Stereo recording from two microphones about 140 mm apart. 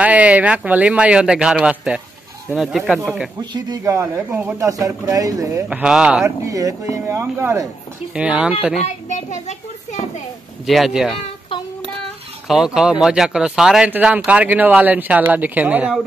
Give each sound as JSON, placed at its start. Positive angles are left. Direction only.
{"t": 0.0, "sound": "speech", "side_deg": -10}
{"t": 3.3, "sound": "a man's voice", "side_deg": -30}
{"t": 5.7, "sound": "speech", "side_deg": -5}
{"t": 6.2, "sound": "a man's voice", "side_deg": -20}
{"t": 8.8, "sound": "a child's voice", "side_deg": 55}
{"t": 10.7, "sound": "speech", "side_deg": 0}
{"t": 12.4, "sound": "speech", "side_deg": -5}